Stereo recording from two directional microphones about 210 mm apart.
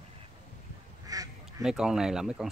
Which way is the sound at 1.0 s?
15° right (ahead or behind).